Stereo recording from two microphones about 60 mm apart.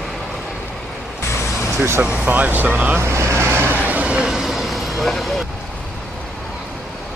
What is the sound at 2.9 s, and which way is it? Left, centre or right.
Vehicle, right.